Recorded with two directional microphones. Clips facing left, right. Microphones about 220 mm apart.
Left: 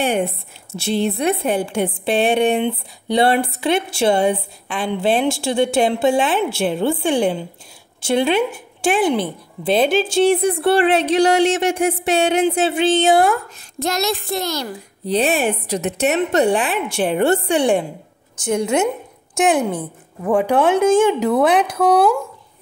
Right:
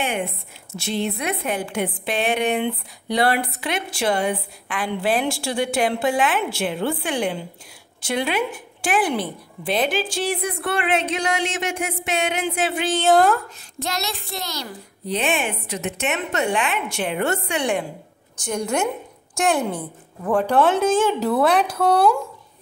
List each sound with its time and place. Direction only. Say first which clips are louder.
0.0 s a woman's voice: left 6 dB; 35° left (ahead or behind)
13.1 s speech: left 1 dB; 10° left (ahead or behind)
13.7 s speech: left 8 dB; 45° left (ahead or behind)
15.0 s a woman's voice: left 6 dB; 35° left (ahead or behind); by 21.4 s 15° left (ahead or behind)
21.7 s speech: left 3 dB; centre (ahead or behind)